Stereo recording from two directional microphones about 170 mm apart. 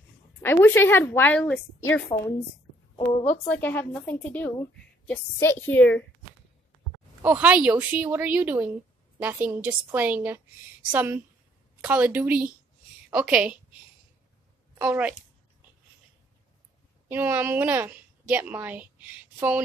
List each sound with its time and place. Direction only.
0.4 s a woman's voice: 15° left (ahead or behind)
3.1 s speech: 30° left (ahead or behind)
3.4 s a woman's voice: 10° left (ahead or behind)
7.2 s a woman's voice: 10° right (ahead or behind)
14.8 s a woman's voice: 5° right (ahead or behind)
17.1 s a woman's voice: 10° right (ahead or behind)